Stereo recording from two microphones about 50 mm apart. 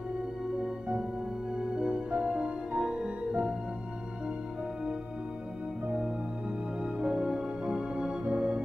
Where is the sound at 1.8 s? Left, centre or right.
Right.